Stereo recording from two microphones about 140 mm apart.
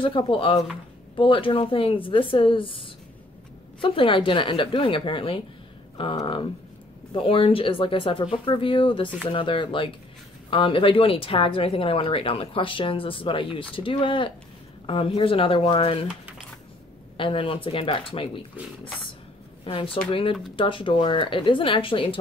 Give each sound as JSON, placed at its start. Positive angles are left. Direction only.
{"t": 0.0, "sound": "speech", "side_deg": 40}
{"t": 7.2, "sound": "speech", "side_deg": 40}
{"t": 17.2, "sound": "speech", "side_deg": 40}
{"t": 19.6, "sound": "speech", "side_deg": 40}